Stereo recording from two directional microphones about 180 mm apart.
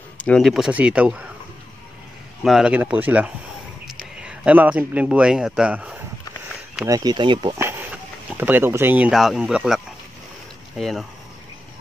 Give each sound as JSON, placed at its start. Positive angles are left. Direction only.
{"t": 0.2, "sound": "speech", "side_deg": 5}
{"t": 2.4, "sound": "speech", "side_deg": -5}
{"t": 6.9, "sound": "speech", "side_deg": -20}
{"t": 7.5, "sound": "speech", "side_deg": -10}
{"t": 10.8, "sound": "speech", "side_deg": 0}